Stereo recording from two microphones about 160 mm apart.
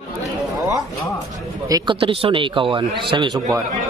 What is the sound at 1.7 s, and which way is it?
A man's voice, 30° right (ahead or behind).